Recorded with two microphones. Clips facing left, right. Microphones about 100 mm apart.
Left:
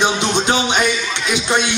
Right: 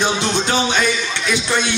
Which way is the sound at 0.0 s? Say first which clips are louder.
Left 2 dB; 20° left (ahead or behind).